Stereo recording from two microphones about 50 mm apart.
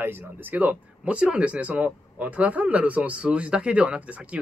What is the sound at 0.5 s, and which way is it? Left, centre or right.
Speech, right.